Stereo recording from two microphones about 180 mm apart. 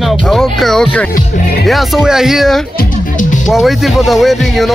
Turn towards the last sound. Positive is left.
turn(degrees=0)  # may be behind; listen again after turning